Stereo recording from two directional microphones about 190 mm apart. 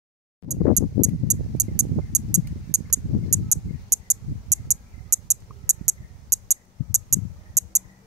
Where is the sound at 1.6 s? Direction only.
20° right (ahead or behind).